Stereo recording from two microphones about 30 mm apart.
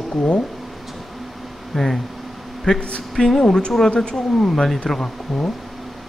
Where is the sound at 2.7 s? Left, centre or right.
Left.